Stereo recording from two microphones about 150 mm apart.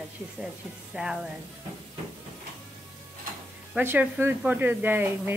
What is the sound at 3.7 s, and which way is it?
Speech, 10° right (ahead or behind).